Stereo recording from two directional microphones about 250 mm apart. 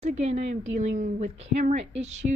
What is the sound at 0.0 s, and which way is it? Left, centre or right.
A woman's voice, right.